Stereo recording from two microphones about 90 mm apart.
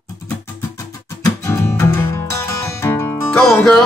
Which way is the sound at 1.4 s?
30° left (ahead or behind).